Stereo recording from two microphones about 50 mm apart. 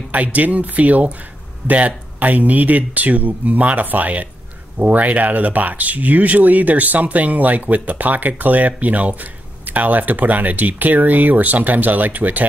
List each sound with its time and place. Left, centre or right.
0.1 s speech: right